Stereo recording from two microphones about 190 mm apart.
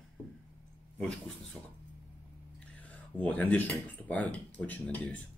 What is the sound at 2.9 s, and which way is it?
Speech, 10° left (ahead or behind).